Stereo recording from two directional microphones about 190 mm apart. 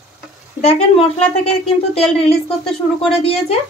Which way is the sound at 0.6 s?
30° left (ahead or behind).